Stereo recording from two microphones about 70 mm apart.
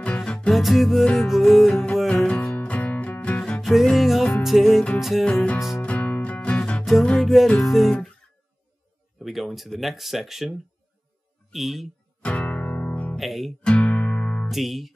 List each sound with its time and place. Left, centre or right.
0.0 s music: centre
0.5 s music: centre
1.1 s speech: centre
2.0 s music: centre
3.9 s music: centre
4.9 s speech: centre
5.2 s music: centre
7.2 s speech: centre
9.2 s speech: centre
11.5 s speech: centre
12.2 s music: centre
13.2 s speech: centre
13.6 s music: centre
14.5 s music: centre